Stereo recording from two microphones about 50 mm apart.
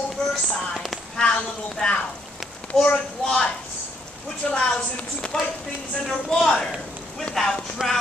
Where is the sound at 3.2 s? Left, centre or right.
Centre.